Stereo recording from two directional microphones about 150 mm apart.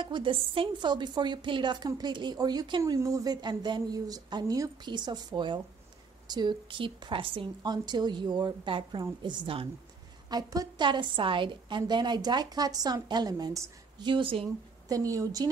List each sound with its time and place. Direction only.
0.0 s a woman's voice: 35° right (ahead or behind)
14.9 s a woman's voice: 25° right (ahead or behind)